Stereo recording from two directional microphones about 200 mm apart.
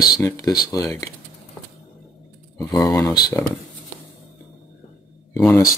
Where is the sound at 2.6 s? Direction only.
15° left (ahead or behind).